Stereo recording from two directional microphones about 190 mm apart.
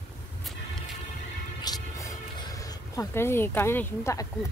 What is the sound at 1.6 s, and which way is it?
Speech, 20° left (ahead or behind).